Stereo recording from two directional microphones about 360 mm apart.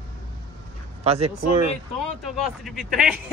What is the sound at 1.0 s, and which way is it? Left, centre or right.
Speech, centre.